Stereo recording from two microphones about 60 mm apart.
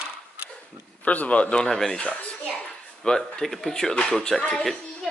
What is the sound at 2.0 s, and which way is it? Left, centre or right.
Speech, left.